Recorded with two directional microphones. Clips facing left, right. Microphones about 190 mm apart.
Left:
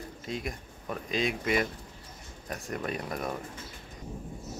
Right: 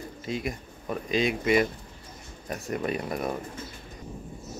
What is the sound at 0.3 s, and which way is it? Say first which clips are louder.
Speech: right 4 dB; 5° right (ahead or behind).